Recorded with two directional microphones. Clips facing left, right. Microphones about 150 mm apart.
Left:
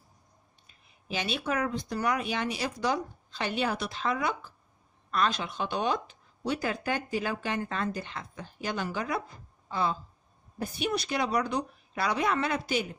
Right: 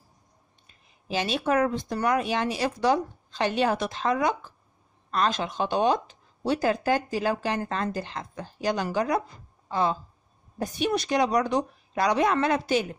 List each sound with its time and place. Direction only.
1.1 s speech: 40° right (ahead or behind)